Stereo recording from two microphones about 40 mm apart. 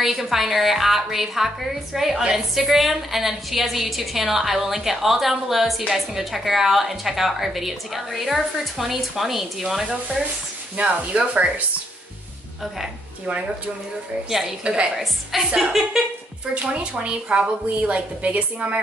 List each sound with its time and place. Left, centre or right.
0.0 s a woman's voice: centre
10.8 s a woman's voice: right
14.6 s a woman's voice: right
15.0 s a woman's voice: centre
16.5 s a woman's voice: right